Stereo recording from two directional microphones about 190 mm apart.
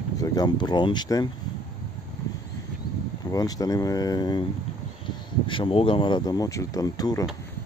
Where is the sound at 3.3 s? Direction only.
20° left (ahead or behind).